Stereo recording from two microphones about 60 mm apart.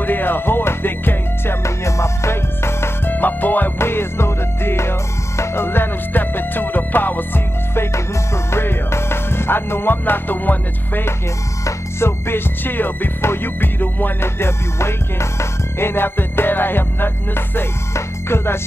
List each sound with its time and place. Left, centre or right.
0.0 s music: left
1.6 s music: left
3.1 s music: left
3.7 s music: left
11.6 s music: left
14.2 s music: left